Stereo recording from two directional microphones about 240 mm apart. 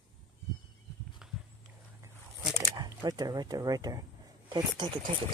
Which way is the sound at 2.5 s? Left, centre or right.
Centre.